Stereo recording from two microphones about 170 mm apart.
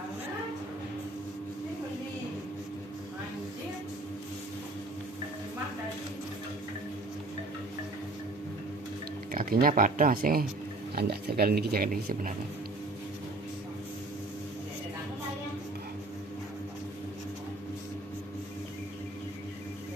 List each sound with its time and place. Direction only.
9.3 s speech: 55° right (ahead or behind)
11.0 s speech: 70° right (ahead or behind); by 12.4 s 55° right (ahead or behind)